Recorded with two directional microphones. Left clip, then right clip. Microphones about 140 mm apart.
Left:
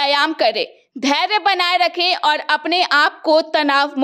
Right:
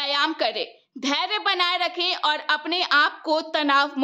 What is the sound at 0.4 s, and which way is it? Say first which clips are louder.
A woman's voice: left 8 dB; 40° left (ahead or behind).